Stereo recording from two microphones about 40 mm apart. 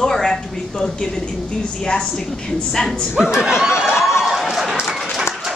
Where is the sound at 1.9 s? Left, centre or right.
Centre.